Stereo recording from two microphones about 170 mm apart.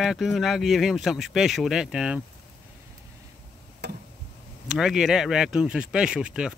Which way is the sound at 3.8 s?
85° right.